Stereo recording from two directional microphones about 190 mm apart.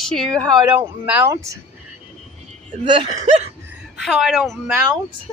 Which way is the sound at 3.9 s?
Centre (ahead or behind).